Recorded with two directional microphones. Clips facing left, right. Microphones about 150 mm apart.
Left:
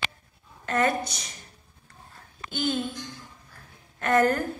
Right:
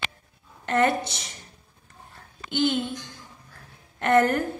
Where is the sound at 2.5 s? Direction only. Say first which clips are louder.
Right 4 dB; 20° right (ahead or behind).